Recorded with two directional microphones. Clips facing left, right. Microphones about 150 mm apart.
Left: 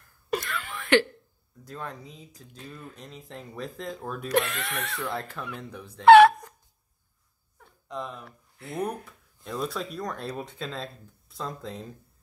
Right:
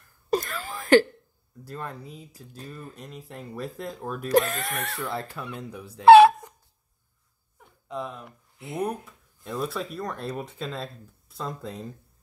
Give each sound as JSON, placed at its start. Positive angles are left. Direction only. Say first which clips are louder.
{"t": 0.3, "sound": "cough", "louder": "right 4 dB", "side_deg": -40}
{"t": 1.6, "sound": "speech", "louder": "right 2 dB", "side_deg": -5}
{"t": 4.3, "sound": "speech", "louder": "right 4 dB", "side_deg": -40}
{"t": 5.0, "sound": "speech", "louder": "right 1 dB", "side_deg": -5}
{"t": 6.0, "sound": "a sound", "louder": "right 1 dB", "side_deg": -25}
{"t": 7.5, "sound": "a sound", "louder": "right 2 dB", "side_deg": -10}
{"t": 8.3, "sound": "speech", "louder": "right 2 dB", "side_deg": -20}
{"t": 9.0, "sound": "speech", "louder": "right 1 dB", "side_deg": 0}